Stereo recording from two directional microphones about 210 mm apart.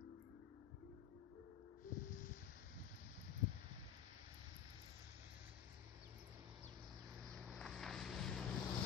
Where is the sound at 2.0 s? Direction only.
40° left (ahead or behind).